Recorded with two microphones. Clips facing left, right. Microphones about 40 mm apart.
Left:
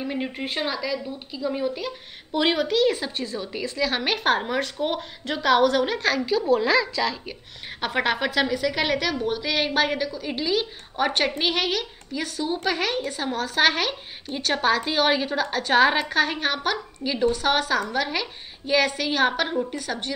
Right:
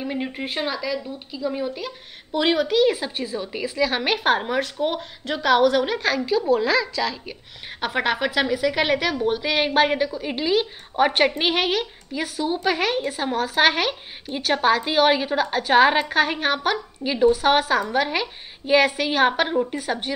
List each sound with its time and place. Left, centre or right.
0.0 s a woman's voice: centre